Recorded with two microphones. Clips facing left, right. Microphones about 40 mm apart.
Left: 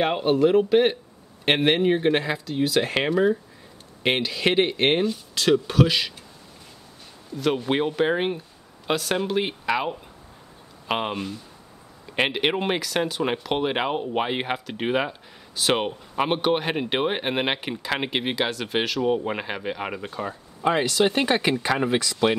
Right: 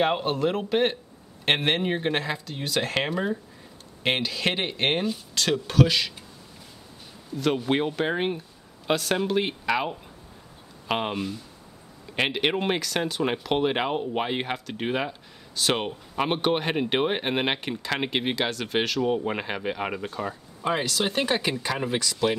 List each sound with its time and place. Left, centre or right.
0.0 s speech: centre
7.3 s speech: centre
20.1 s speech: centre
21.6 s speech: left